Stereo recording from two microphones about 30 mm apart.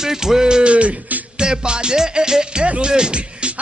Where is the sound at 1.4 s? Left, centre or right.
Right.